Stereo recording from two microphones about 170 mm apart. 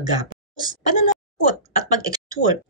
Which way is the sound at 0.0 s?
25° right (ahead or behind).